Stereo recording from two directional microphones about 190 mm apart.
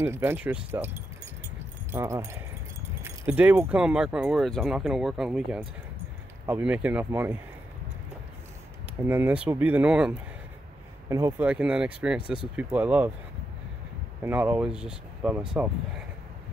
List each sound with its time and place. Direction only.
0.0 s speech: 10° right (ahead or behind)
9.0 s speech: 10° right (ahead or behind)
14.2 s speech: 10° right (ahead or behind)